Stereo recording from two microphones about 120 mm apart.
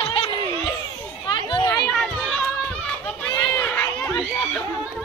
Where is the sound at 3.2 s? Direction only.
10° left (ahead or behind).